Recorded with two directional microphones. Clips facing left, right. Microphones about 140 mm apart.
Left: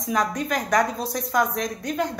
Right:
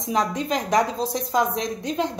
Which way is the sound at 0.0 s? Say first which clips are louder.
Right 1 dB; 25° right (ahead or behind).